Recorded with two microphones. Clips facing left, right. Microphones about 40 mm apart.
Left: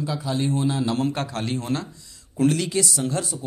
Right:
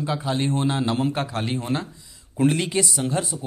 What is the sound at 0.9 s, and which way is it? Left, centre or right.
Speech, centre.